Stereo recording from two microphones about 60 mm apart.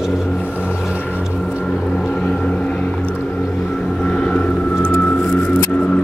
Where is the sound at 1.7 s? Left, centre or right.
Centre.